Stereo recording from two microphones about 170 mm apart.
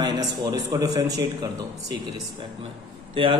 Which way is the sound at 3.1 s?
30° right (ahead or behind).